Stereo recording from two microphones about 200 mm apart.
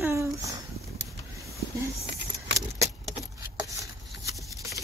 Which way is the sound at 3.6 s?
15° right (ahead or behind).